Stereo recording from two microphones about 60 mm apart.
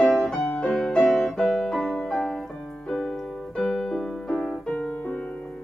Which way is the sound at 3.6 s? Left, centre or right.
Centre.